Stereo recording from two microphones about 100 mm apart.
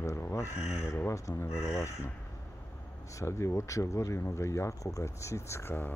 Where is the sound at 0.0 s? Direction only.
30° left (ahead or behind).